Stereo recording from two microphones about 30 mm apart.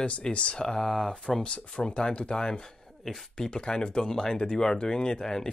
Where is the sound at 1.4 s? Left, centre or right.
Left.